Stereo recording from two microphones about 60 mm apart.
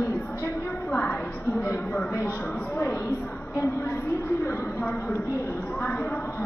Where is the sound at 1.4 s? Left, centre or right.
Left.